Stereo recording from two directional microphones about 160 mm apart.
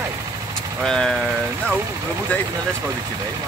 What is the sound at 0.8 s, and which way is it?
Speech, 5° left (ahead or behind).